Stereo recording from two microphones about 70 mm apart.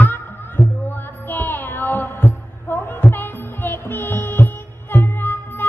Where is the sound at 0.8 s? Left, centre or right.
Left.